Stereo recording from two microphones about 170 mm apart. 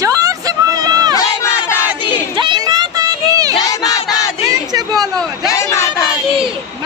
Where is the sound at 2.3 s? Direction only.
25° right (ahead or behind).